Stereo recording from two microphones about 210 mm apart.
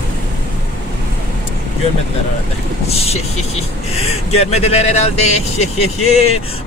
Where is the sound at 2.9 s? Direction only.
30° left (ahead or behind).